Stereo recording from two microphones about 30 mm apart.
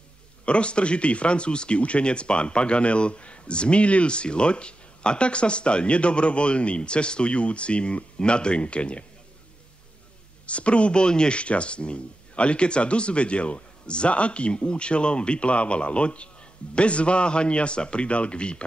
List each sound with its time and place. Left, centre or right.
0.5 s speech: left
10.4 s speech: left
11.3 s speech: left